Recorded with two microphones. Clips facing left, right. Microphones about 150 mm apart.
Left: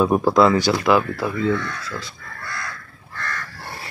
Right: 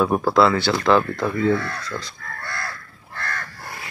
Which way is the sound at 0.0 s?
15° left (ahead or behind).